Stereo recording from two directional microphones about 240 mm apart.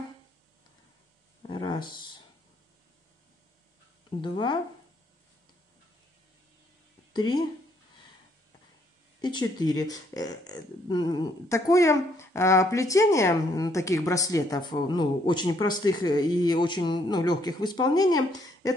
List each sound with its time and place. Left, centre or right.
1.5 s a sound: centre
4.2 s speech: centre
7.2 s speech: centre
9.2 s speech: centre